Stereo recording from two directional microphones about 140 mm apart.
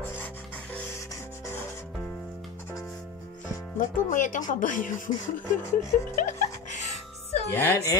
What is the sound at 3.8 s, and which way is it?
Speech, 65° left (ahead or behind).